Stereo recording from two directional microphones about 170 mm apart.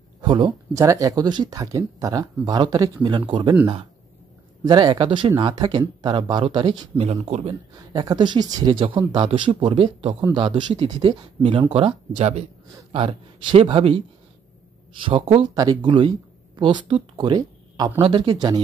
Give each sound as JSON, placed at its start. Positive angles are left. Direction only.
{"t": 0.2, "sound": "speech", "side_deg": -30}
{"t": 4.6, "sound": "a man's voice", "side_deg": -25}
{"t": 7.9, "sound": "a man's voice", "side_deg": -25}
{"t": 15.5, "sound": "speech", "side_deg": -25}